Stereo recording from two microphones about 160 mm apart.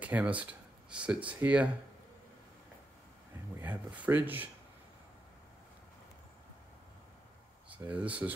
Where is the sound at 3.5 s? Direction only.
10° right (ahead or behind).